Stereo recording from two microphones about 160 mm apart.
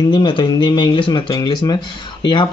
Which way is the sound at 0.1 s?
30° left (ahead or behind).